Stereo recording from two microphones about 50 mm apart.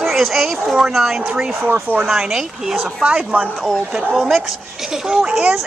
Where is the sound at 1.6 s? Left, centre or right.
Right.